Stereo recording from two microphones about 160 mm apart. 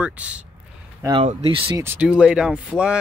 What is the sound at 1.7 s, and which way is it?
Speech, 10° right (ahead or behind).